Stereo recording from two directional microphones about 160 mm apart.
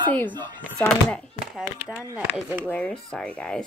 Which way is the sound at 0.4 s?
5° left (ahead or behind).